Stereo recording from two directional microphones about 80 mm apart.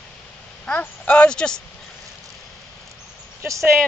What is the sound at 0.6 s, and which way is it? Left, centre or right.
Speech, centre.